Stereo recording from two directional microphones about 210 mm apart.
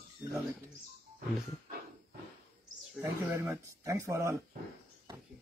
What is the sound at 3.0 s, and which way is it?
Speech, 15° right (ahead or behind).